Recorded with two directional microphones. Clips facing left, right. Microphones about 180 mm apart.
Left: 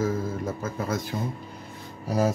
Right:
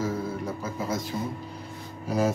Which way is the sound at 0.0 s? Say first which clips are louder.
Left 2 dB; 50° left (ahead or behind).